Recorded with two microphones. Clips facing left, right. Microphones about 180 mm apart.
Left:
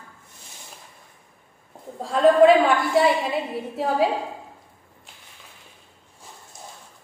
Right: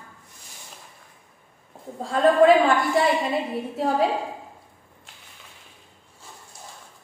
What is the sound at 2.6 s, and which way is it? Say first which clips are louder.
A woman's voice: left 1 dB; centre (ahead or behind).